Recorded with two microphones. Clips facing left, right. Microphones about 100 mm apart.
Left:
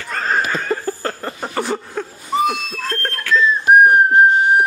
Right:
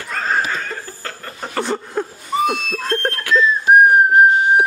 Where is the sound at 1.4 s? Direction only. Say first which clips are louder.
Right 1 dB; 5° left (ahead or behind).